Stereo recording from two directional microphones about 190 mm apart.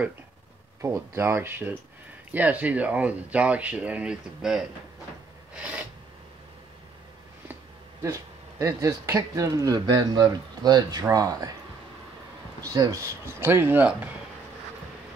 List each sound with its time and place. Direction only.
0.7 s speech: 15° right (ahead or behind)
5.5 s filing: 5° right (ahead or behind)
8.0 s speech: 15° right (ahead or behind)
12.6 s speech: 20° right (ahead or behind)